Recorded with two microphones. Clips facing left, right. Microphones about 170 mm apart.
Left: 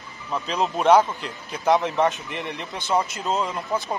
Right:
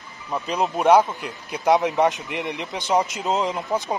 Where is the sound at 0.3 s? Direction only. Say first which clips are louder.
Right 1 dB; 15° right (ahead or behind).